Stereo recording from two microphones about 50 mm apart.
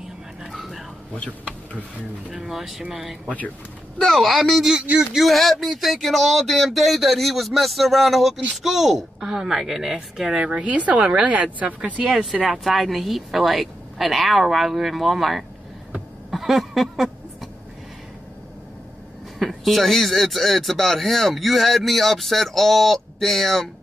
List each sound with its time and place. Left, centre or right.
0.4 s a sound: centre
1.1 s speech: left
2.3 s a woman's voice: centre
10.3 s speech: right
12.4 s speech: centre
16.3 s a sound: centre
19.3 s speech: centre